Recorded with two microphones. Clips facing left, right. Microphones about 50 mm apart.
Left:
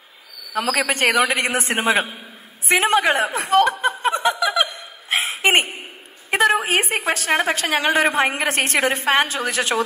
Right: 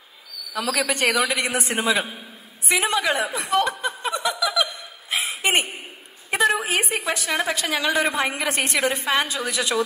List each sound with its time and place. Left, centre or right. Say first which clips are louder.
0.5 s a man's voice: left 3 dB; left
5.1 s a sound: left 4 dB; left
6.3 s a man's voice: left 3 dB; left